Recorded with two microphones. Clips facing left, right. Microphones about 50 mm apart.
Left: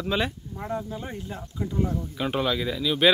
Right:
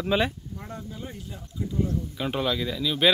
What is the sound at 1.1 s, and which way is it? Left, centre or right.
Speech, left.